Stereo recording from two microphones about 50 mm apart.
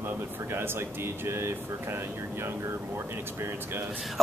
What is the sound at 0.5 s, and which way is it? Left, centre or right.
A man's voice, right.